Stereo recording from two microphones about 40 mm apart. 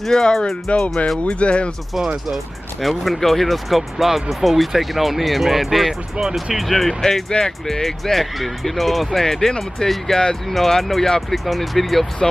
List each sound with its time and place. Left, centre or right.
0.0 s speech: centre
0.7 s speech: left
2.2 s speech: centre